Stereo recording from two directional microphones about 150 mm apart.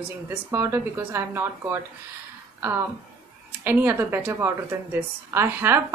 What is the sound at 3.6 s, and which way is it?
A woman's voice, 15° right (ahead or behind).